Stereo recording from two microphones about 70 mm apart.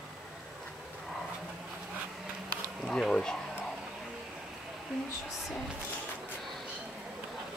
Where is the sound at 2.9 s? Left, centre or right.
Centre.